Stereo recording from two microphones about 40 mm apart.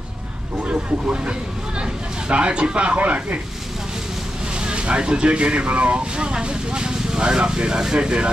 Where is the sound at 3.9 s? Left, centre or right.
Right.